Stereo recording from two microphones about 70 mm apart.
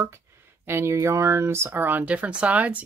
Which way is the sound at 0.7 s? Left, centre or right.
Right.